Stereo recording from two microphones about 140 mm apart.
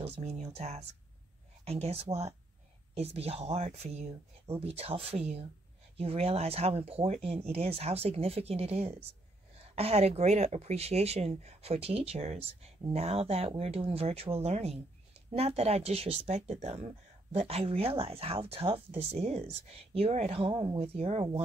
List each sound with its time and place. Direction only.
0.0 s speech: 50° right (ahead or behind)